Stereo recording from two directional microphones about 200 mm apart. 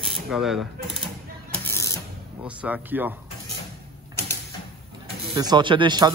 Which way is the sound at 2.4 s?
5° right (ahead or behind).